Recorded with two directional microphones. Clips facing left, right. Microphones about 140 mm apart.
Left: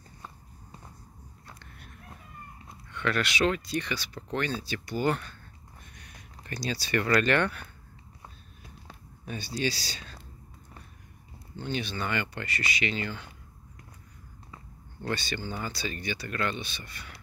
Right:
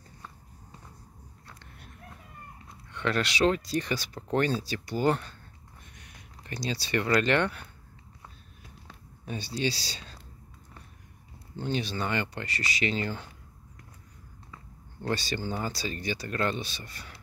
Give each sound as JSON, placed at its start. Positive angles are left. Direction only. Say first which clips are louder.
{"t": 2.9, "sound": "speech", "louder": "even", "side_deg": -30}
{"t": 5.9, "sound": "speech", "louder": "left 1 dB", "side_deg": -20}
{"t": 9.2, "sound": "speech", "louder": "even", "side_deg": -25}
{"t": 11.5, "sound": "speech", "louder": "right 2 dB", "side_deg": -35}
{"t": 15.0, "sound": "speech", "louder": "right 2 dB", "side_deg": -35}